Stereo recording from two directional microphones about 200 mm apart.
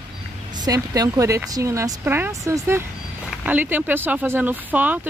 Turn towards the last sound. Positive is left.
turn(degrees=-10)  # may be behind; listen again after turning